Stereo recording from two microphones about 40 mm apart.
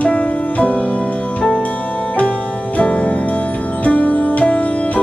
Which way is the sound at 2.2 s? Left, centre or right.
Left.